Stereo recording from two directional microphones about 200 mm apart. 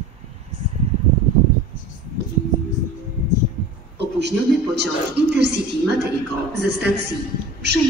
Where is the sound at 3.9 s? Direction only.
55° right (ahead or behind).